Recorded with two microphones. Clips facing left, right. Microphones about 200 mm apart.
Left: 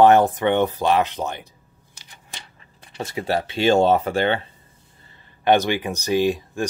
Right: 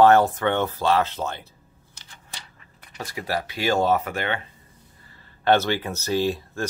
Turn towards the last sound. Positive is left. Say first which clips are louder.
# left 4 dB
turn(degrees=15)  # may be behind; listen again after turning